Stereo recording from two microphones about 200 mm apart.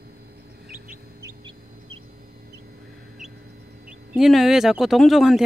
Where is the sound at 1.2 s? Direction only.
15° right (ahead or behind).